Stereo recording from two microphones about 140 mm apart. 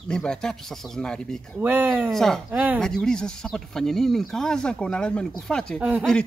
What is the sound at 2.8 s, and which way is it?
Speech, 5° left (ahead or behind).